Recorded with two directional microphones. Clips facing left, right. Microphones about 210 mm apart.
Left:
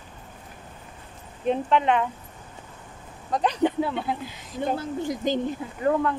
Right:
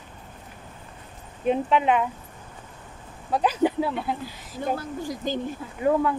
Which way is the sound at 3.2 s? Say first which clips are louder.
Right 1 dB; 5° right (ahead or behind).